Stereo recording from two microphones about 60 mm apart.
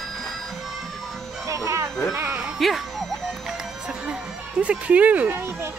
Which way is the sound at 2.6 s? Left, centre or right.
Centre.